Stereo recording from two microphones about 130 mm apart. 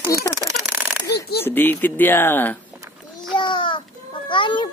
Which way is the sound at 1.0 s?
15° left (ahead or behind).